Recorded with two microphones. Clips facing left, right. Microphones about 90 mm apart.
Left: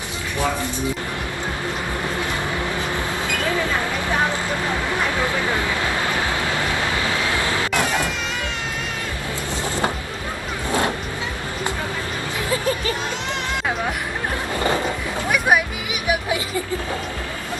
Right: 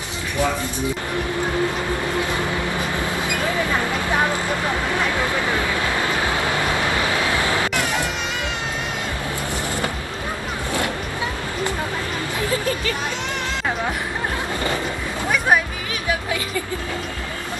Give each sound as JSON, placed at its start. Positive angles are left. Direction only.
{"t": 6.7, "sound": "vehicle", "side_deg": -20}
{"t": 12.4, "sound": "music", "side_deg": 30}
{"t": 15.3, "sound": "music", "side_deg": 10}